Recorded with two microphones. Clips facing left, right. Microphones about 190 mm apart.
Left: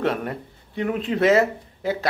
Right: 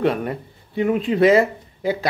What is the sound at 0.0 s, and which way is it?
Speech, centre (ahead or behind).